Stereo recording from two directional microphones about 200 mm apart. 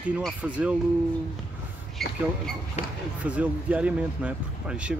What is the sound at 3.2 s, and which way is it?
Speech, 5° right (ahead or behind).